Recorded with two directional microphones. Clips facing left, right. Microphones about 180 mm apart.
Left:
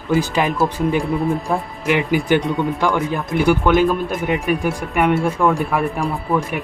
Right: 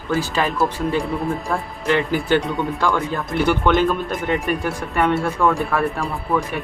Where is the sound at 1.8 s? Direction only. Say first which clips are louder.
Left 1 dB; 15° left (ahead or behind).